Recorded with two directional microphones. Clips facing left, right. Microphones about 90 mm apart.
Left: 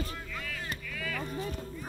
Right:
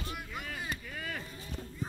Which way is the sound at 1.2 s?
55° left (ahead or behind).